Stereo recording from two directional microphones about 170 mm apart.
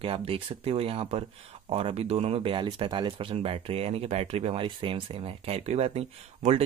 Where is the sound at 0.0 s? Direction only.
35° right (ahead or behind).